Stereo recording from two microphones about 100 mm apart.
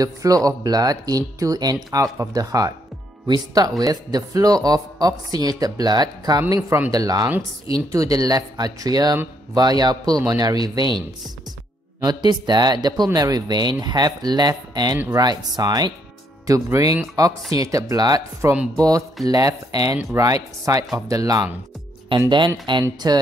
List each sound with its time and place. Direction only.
0.0 s speech: 35° right (ahead or behind)
12.0 s speech: 45° right (ahead or behind)
18.4 s speech: 25° right (ahead or behind)
18.8 s speech: 35° right (ahead or behind)
22.7 s speech: 50° right (ahead or behind)